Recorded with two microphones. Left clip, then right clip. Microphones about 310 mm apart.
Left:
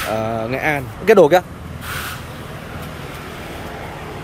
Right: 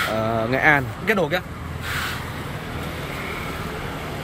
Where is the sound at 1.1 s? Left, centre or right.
Centre.